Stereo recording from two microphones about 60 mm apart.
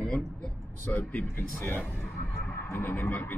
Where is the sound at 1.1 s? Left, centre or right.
Left.